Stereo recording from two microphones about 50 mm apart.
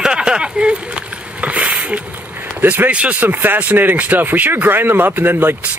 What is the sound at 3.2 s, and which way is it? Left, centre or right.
Speech, right.